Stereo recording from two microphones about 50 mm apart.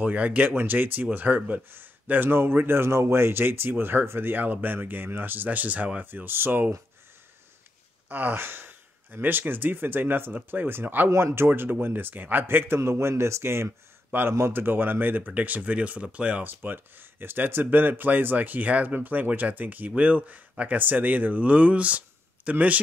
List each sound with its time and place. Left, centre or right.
0.0 s speech: right
0.5 s a man's voice: right
6.0 s speech: right
8.1 s a man's voice: right
11.1 s speech: right
11.3 s a man's voice: right
13.4 s speech: right
14.4 s speech: right
16.4 s speech: right